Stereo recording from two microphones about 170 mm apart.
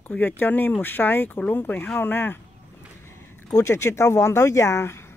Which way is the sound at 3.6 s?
15° left (ahead or behind).